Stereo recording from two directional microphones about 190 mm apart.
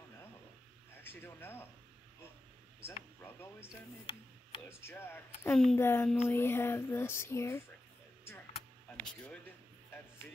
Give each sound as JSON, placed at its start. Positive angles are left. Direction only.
{"t": 1.0, "sound": "speech", "side_deg": 10}
{"t": 4.0, "sound": "speech", "side_deg": 25}
{"t": 4.6, "sound": "speech", "side_deg": 10}